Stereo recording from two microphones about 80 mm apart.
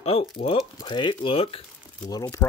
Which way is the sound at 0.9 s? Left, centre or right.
Left.